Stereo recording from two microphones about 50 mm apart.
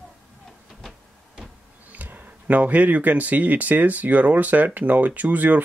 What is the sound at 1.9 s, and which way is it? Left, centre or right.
Speech, right.